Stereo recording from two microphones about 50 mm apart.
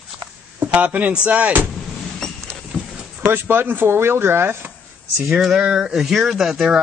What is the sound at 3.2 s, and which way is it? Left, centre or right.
Speech, right.